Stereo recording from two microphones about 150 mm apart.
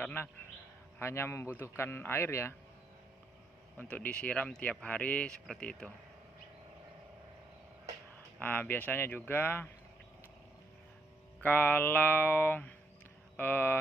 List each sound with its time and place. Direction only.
0.0 s a man's voice: 15° left (ahead or behind)
3.7 s speech: 10° left (ahead or behind)
8.4 s speech: 15° left (ahead or behind)
11.4 s speech: 10° left (ahead or behind)